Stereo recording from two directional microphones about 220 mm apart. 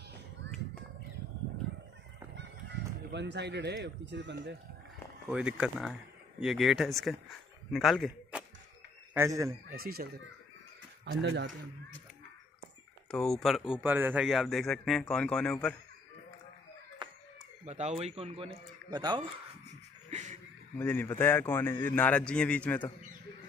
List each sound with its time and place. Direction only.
2.3 s speech: 55° right (ahead or behind)
5.3 s a man's voice: 5° right (ahead or behind)
9.1 s speech: 15° right (ahead or behind)
9.7 s speech: 45° right (ahead or behind)
13.1 s speech: centre (ahead or behind)
17.6 s speech: 30° right (ahead or behind)
20.1 s music: 30° right (ahead or behind)
20.7 s a man's voice: 10° left (ahead or behind)